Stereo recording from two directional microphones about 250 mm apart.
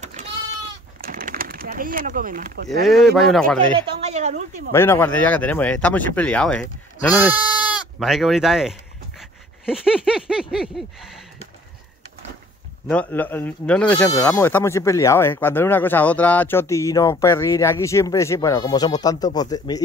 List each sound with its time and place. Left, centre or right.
0.0 s goat: right
1.0 s bird: right
2.9 s speech: centre
3.9 s a woman's voice: right
4.7 s speech: centre
9.2 s dog: centre
10.5 s speech: centre
12.9 s speech: centre